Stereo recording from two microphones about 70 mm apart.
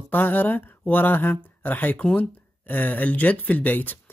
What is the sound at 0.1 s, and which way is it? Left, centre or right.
Speech, left.